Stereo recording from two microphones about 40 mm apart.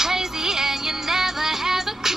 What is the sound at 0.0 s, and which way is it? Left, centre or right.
Music, centre.